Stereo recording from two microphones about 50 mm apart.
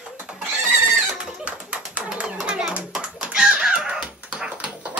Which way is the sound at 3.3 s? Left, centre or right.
Centre.